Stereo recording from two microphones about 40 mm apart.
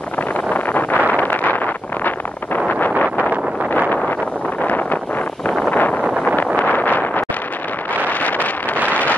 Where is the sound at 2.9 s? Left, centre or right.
Left.